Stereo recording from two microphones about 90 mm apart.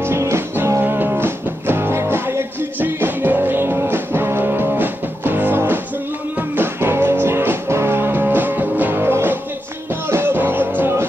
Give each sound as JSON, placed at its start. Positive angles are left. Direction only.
{"t": 0.0, "sound": "music", "side_deg": -30}